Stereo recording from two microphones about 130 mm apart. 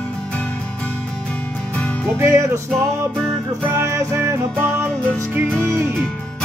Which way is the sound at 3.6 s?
20° right (ahead or behind).